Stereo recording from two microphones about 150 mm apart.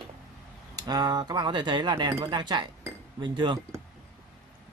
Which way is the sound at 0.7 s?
25° right (ahead or behind).